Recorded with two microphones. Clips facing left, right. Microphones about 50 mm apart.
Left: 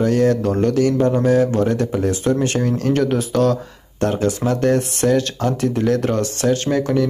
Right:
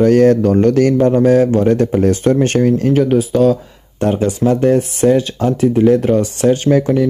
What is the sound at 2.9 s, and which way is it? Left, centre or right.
Speech, centre.